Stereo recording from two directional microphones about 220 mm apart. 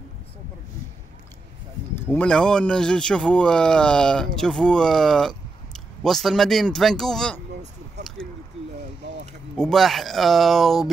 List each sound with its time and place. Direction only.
2.0 s speech: 5° left (ahead or behind)
8.2 s a sound: 5° left (ahead or behind)
9.6 s speech: centre (ahead or behind)